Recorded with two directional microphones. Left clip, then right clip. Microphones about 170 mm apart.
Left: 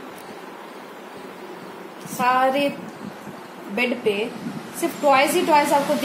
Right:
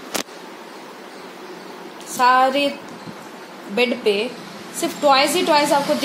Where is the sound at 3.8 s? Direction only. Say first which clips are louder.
Right 4 dB; 45° right (ahead or behind).